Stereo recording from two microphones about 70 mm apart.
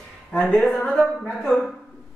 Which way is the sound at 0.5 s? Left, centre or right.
Centre.